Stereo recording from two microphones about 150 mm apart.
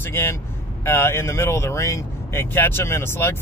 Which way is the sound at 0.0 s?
15° left (ahead or behind).